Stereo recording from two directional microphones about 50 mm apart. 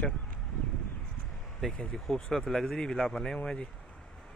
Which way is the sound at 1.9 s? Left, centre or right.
Centre.